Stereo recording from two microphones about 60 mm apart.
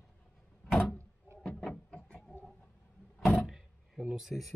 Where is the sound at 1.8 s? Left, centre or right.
Centre.